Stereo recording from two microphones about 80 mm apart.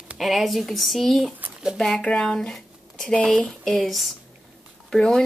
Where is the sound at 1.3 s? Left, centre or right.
Right.